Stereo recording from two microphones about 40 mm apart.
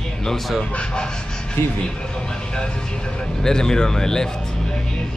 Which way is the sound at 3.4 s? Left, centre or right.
Centre.